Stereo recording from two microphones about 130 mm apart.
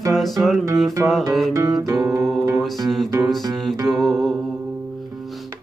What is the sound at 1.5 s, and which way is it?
Music, 25° right (ahead or behind).